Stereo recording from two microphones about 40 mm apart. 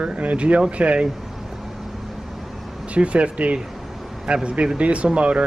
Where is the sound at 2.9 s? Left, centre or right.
Right.